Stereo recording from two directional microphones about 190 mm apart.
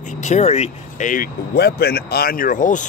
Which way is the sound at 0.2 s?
35° left (ahead or behind).